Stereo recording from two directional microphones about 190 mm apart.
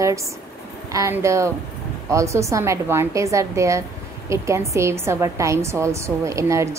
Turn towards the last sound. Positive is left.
turn(degrees=-15)  # may be behind; listen again after turning